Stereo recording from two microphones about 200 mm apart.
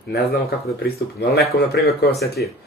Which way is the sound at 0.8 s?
50° left (ahead or behind).